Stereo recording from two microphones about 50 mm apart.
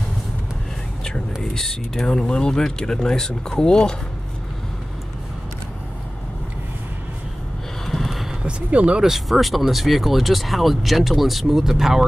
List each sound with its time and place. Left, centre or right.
1.4 s speech: centre
7.8 s snort: centre
8.4 s speech: right
9.0 s speech: centre